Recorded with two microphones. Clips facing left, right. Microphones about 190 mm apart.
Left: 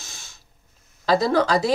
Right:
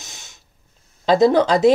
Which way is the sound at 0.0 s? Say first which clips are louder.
Right 2 dB; 20° right (ahead or behind).